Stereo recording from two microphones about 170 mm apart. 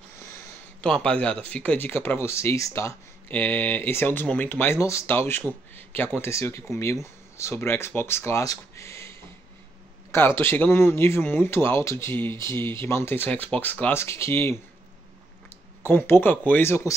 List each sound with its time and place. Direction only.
0.3 s speech: 5° left (ahead or behind)
15.8 s speech: 15° left (ahead or behind)